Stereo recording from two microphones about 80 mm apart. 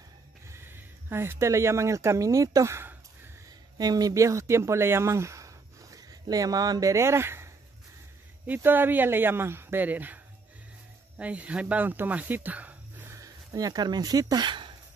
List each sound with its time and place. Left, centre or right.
0.5 s speech: right
3.4 s a sound: right
6.2 s speech: right
13.5 s speech: right